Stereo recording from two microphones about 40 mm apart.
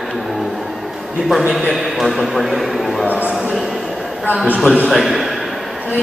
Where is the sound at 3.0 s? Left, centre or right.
Right.